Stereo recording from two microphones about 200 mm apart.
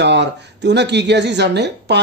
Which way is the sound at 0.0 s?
60° right (ahead or behind).